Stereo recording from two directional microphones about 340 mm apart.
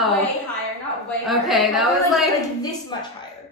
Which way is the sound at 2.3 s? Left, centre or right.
Centre.